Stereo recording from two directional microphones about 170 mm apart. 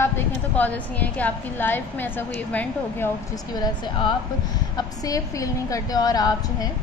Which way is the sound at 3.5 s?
25° left (ahead or behind).